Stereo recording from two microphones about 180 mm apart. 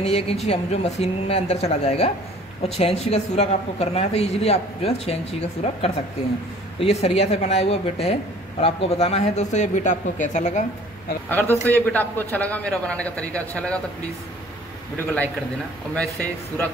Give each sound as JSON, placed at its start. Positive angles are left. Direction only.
{"t": 0.0, "sound": "speech", "side_deg": 35}
{"t": 11.2, "sound": "a man's voice", "side_deg": 10}